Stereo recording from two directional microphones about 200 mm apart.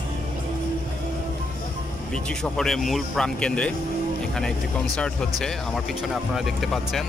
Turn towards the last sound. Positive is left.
turn(degrees=0)  # may be behind; listen again after turning